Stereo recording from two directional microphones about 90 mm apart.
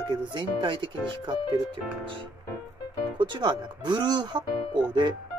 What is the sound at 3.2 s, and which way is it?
Speech, 60° right (ahead or behind).